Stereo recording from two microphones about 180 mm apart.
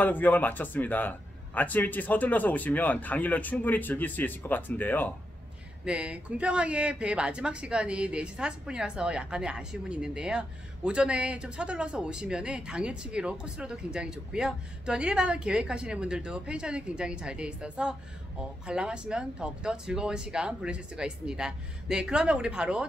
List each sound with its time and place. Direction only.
0.0 s a man's voice: 10° left (ahead or behind)
5.9 s speech: 5° right (ahead or behind)